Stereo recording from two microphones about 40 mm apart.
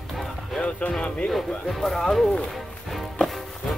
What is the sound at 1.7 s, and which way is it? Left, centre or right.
Speech, centre.